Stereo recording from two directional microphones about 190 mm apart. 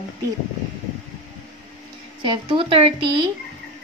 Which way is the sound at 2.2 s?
25° right (ahead or behind).